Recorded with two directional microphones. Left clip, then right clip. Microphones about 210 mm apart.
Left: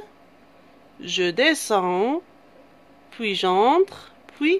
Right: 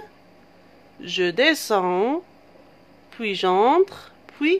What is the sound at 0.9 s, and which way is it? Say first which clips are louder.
Speech: right 1 dB; 5° left (ahead or behind).